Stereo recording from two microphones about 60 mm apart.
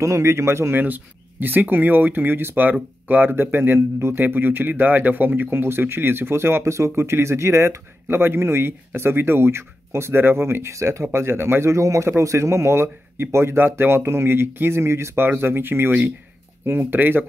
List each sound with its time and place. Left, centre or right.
0.0 s speech: right
0.7 s speech: right